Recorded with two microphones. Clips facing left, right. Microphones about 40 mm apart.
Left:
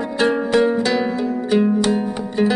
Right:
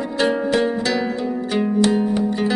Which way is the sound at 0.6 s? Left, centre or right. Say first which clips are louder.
Left 3 dB; centre.